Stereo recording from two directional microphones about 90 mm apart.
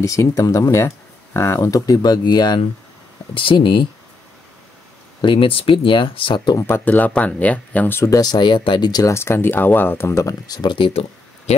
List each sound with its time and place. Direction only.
0.0 s speech: 35° left (ahead or behind); by 2.6 s 55° left (ahead or behind)
3.3 s speech: 70° left (ahead or behind)
5.2 s speech: 70° left (ahead or behind)
6.6 s speech: 20° left (ahead or behind)
8.0 s speech: 45° left (ahead or behind); by 9.0 s 60° left (ahead or behind)
9.0 s speech: 30° left (ahead or behind); by 11.0 s 65° left (ahead or behind)